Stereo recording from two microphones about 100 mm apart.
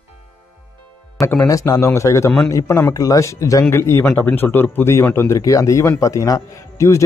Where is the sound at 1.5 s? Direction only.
35° left (ahead or behind).